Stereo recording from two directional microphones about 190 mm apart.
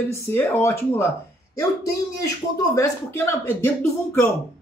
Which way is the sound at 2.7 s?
15° left (ahead or behind).